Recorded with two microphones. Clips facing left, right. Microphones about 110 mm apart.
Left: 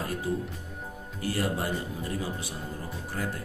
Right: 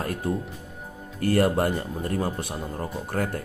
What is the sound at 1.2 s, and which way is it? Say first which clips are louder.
Speech: right 8 dB; 55° right (ahead or behind).